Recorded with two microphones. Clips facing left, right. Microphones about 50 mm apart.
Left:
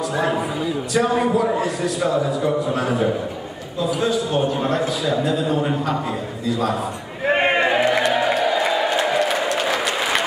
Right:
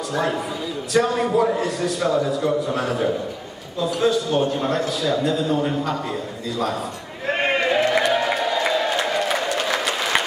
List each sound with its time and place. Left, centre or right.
0.1 s a man's voice: centre
7.2 s a sound: centre
7.9 s music: centre
8.6 s crowd: centre
9.5 s applause: centre